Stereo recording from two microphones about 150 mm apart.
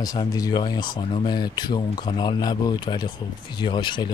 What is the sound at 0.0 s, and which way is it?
Speech, 25° left (ahead or behind).